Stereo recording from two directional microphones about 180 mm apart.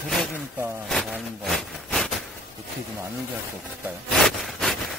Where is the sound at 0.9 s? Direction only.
Centre (ahead or behind).